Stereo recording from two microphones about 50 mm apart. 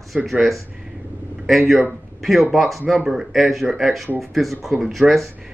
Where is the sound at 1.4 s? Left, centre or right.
Centre.